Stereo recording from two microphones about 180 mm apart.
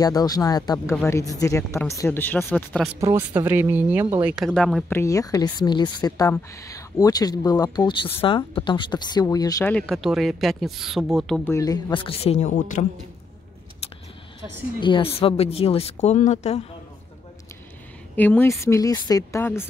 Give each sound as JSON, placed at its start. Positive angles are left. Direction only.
{"t": 0.0, "sound": "speech", "side_deg": 20}
{"t": 3.0, "sound": "speech", "side_deg": -15}
{"t": 4.9, "sound": "speech", "side_deg": 20}
{"t": 9.7, "sound": "speech", "side_deg": 5}
{"t": 11.5, "sound": "speech", "side_deg": 20}
{"t": 14.8, "sound": "speech", "side_deg": 25}
{"t": 18.1, "sound": "speech", "side_deg": 10}